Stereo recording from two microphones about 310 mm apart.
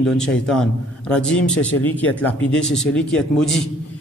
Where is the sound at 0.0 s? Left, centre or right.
Centre.